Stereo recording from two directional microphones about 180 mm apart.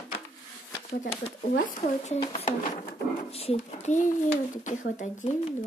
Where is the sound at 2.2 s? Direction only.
30° left (ahead or behind).